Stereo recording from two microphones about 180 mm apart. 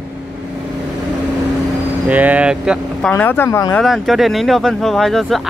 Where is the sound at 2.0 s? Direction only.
10° right (ahead or behind).